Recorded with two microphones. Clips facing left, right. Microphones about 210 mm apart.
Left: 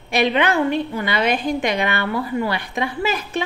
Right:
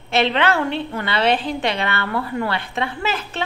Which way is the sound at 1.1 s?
30° right (ahead or behind).